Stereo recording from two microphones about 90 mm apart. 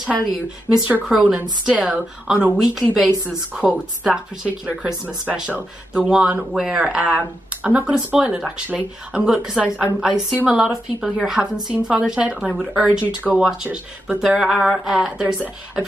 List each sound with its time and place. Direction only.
0.8 s speech: 20° right (ahead or behind)
13.4 s speech: 5° right (ahead or behind)